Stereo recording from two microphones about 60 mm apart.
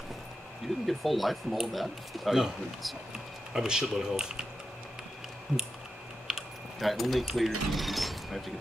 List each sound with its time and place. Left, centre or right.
0.8 s speech: centre
6.2 s speech: centre